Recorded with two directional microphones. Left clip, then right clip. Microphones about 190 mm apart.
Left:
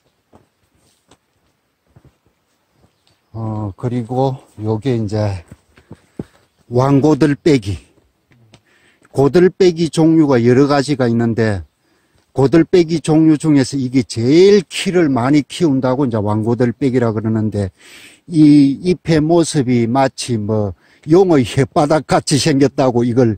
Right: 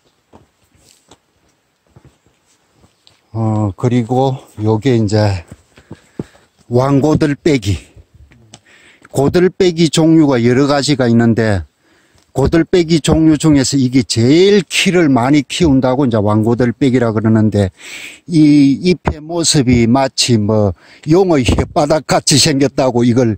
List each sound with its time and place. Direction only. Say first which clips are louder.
3.3 s speech: right 7 dB; 25° right (ahead or behind)
5.9 s horse: right 5 dB; 5° right (ahead or behind)
6.7 s speech: right 1 dB; 15° right (ahead or behind)